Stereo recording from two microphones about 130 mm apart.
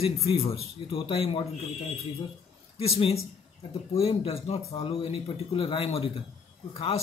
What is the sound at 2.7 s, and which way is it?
A man's voice, 50° left (ahead or behind).